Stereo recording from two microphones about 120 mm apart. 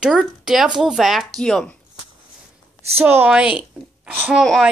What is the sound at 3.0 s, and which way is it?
Speech, 15° right (ahead or behind).